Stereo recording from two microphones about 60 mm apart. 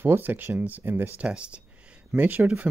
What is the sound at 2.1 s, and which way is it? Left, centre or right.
Speech, right.